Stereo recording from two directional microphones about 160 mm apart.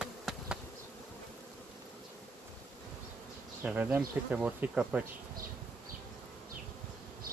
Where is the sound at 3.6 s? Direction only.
10° right (ahead or behind).